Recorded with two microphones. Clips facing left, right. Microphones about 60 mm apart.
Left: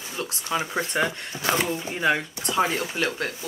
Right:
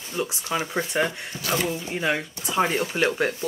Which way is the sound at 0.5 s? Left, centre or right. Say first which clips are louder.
Left 1 dB; centre.